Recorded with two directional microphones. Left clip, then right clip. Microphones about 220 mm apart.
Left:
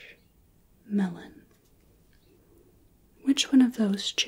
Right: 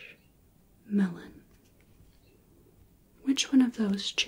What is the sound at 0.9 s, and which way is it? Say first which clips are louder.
Speech: even; 15° right (ahead or behind).